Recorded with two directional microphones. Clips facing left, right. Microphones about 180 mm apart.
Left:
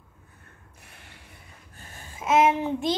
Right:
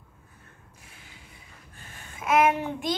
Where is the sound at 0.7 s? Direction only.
60° left (ahead or behind).